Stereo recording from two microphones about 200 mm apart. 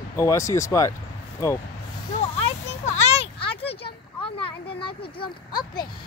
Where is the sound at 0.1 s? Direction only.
15° left (ahead or behind).